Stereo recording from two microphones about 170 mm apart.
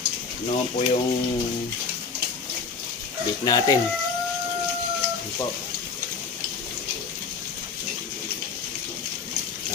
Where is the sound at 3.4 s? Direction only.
20° left (ahead or behind).